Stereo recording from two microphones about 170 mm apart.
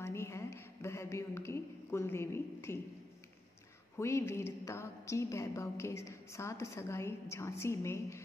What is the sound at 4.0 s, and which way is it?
A woman's voice, 15° left (ahead or behind).